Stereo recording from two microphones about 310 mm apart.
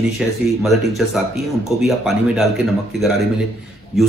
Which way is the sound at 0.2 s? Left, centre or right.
Centre.